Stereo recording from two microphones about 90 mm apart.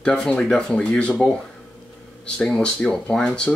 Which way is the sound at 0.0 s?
10° left (ahead or behind).